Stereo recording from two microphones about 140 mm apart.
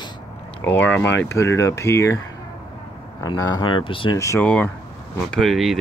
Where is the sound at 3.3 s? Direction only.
30° left (ahead or behind).